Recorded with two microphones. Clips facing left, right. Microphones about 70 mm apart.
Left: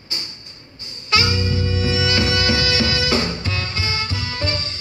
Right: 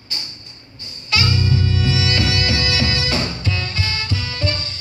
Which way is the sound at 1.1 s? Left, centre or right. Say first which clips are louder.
Even; left.